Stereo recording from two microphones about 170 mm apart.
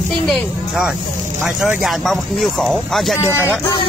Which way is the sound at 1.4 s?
10° right (ahead or behind).